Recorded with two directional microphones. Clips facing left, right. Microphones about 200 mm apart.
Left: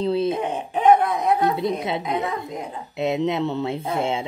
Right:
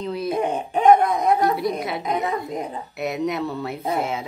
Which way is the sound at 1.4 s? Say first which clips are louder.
Even; 25° left (ahead or behind).